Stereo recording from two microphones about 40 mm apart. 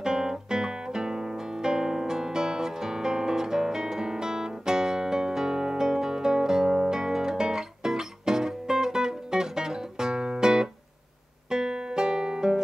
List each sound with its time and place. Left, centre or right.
0.0 s guitar: centre
11.4 s music: centre